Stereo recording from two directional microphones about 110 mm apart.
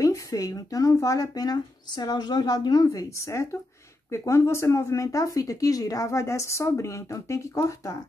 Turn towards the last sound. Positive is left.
turn(degrees=30)  # may be behind; listen again after turning